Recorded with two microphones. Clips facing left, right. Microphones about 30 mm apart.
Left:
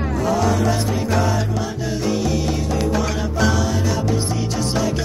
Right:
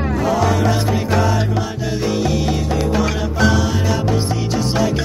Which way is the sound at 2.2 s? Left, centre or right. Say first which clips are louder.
Right 2 dB; right.